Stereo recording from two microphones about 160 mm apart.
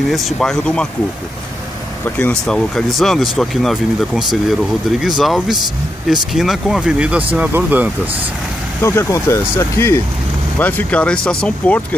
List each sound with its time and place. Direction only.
0.1 s speech: centre (ahead or behind)
2.0 s speech: 10° left (ahead or behind); by 7.9 s 10° right (ahead or behind)
8.8 s speech: 15° left (ahead or behind)